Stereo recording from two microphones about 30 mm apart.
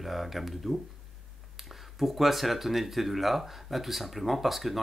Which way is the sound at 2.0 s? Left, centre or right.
Centre.